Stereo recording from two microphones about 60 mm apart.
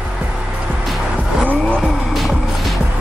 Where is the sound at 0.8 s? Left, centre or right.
Centre.